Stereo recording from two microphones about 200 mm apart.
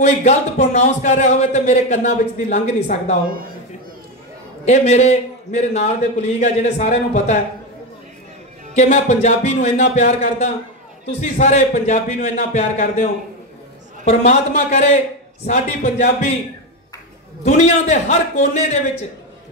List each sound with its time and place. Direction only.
0.0 s a man's voice: 35° left (ahead or behind)
4.6 s a man's voice: 35° left (ahead or behind)
8.7 s a man's voice: 35° left (ahead or behind)
17.4 s a man's voice: 35° left (ahead or behind)